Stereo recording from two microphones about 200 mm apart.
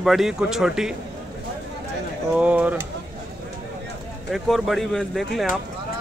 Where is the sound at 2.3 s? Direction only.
5° right (ahead or behind).